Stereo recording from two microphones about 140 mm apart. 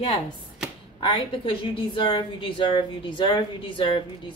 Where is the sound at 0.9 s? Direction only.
35° left (ahead or behind).